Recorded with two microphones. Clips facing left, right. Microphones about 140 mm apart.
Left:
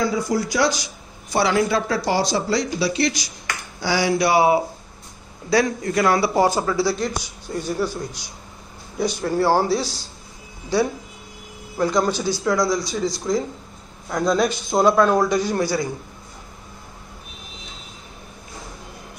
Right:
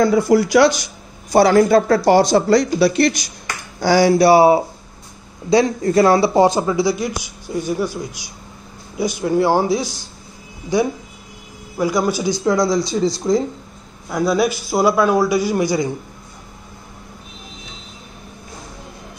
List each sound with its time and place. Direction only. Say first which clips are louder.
0.0 s speech: right 8 dB; 60° right (ahead or behind)
1.3 s a man's voice: right 8 dB; 45° right (ahead or behind); by 12.4 s 10° right (ahead or behind)
12.4 s speech: right 4 dB; 25° right (ahead or behind)
14.0 s a man's voice: right 2 dB; 10° right (ahead or behind)